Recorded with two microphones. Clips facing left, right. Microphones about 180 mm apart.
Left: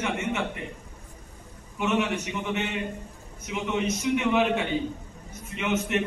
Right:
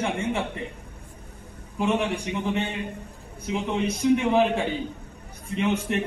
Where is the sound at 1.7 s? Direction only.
35° right (ahead or behind).